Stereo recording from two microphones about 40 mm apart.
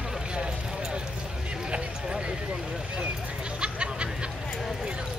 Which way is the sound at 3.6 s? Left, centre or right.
Right.